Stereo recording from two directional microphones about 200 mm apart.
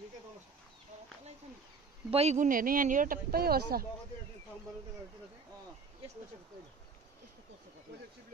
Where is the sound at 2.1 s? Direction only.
30° right (ahead or behind); by 3.8 s 50° right (ahead or behind).